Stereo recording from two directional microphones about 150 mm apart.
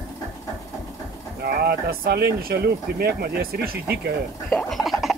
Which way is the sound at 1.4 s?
90° right.